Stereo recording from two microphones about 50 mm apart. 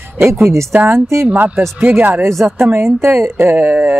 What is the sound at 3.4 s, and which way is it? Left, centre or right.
Speech, right.